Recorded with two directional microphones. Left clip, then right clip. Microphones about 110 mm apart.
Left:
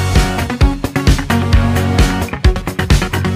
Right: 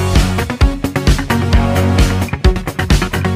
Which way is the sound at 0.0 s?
Centre (ahead or behind).